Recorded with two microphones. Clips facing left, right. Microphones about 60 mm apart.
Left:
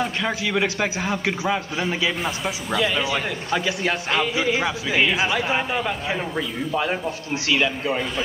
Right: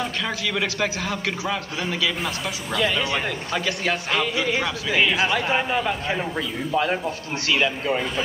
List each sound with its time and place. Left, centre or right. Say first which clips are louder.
0.0 s a man's voice: left 2 dB; centre
1.5 s a man's voice: left 3 dB; left
2.2 s a man's voice: left 2 dB; centre